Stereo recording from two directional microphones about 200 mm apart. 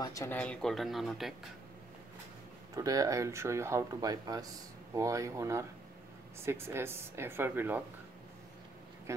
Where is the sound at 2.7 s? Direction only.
15° right (ahead or behind).